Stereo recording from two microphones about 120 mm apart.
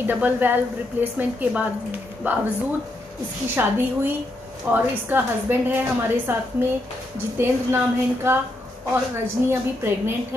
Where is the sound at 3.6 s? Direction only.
20° right (ahead or behind).